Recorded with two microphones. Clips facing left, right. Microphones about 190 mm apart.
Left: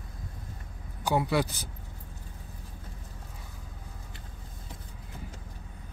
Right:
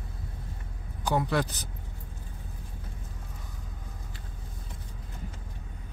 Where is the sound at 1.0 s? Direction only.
10° left (ahead or behind).